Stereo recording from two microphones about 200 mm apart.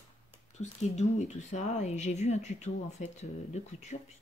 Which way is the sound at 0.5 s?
35° left (ahead or behind).